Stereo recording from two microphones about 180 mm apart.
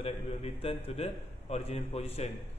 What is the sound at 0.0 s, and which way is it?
A man's voice, 35° left (ahead or behind).